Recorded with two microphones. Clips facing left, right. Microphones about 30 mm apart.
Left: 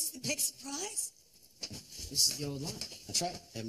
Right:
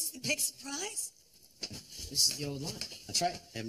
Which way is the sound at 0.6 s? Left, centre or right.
Right.